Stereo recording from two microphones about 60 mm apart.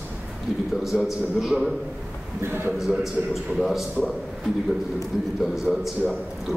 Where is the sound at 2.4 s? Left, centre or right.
Right.